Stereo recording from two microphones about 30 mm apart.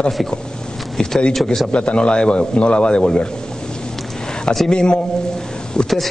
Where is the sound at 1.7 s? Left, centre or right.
Left.